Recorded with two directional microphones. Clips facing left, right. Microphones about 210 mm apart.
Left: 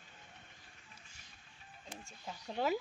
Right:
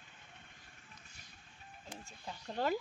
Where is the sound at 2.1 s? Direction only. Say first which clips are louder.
Left 1 dB; centre (ahead or behind).